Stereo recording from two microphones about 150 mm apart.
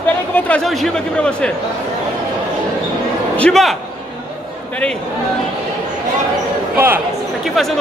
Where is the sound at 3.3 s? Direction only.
5° left (ahead or behind).